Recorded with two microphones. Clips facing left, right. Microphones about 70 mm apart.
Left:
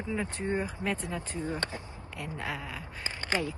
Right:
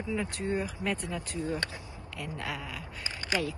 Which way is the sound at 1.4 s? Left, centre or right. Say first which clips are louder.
Right 1 dB; left.